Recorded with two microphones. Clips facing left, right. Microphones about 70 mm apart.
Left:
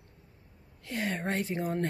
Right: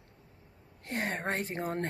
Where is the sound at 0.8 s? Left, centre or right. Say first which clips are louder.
Left 1 dB; right.